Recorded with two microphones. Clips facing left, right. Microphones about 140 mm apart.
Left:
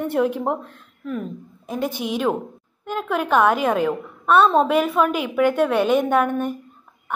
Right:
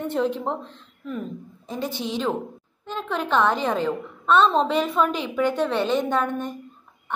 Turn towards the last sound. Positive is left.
turn(degrees=10)  # may be behind; listen again after turning